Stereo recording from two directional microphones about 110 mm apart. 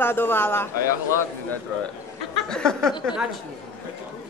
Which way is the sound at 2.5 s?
5° left (ahead or behind).